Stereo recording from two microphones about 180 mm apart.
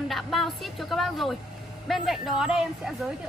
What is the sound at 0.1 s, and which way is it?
A woman's voice, centre (ahead or behind).